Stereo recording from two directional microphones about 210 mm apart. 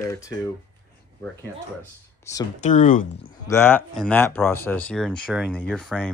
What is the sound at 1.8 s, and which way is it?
Speech, 15° left (ahead or behind).